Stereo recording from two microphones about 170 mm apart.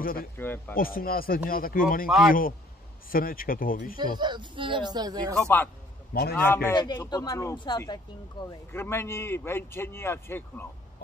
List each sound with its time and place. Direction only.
0.0 s speech: 60° left (ahead or behind)
0.4 s speech: 10° left (ahead or behind)
0.7 s speech: 60° left (ahead or behind)
2.0 s speech: centre (ahead or behind)
3.1 s speech: 55° left (ahead or behind)
4.0 s speech: 25° right (ahead or behind)
6.3 s speech: 10° left (ahead or behind)
6.8 s speech: 25° left (ahead or behind)